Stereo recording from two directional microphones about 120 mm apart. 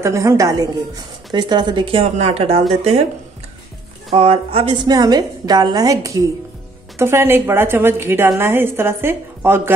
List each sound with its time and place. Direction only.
0.0 s a woman's voice: 25° right (ahead or behind); by 3.1 s 60° right (ahead or behind)
4.1 s speech: 55° right (ahead or behind)
4.8 s a woman's voice: 35° right (ahead or behind)